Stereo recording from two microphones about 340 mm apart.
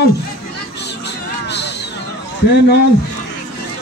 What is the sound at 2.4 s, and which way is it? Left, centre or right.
Speech, left.